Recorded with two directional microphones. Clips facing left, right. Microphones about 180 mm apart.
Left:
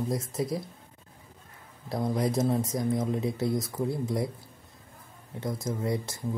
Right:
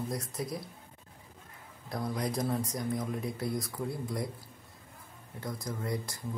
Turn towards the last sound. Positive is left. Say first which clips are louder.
# left 5 dB
turn(degrees=25)  # may be behind; listen again after turning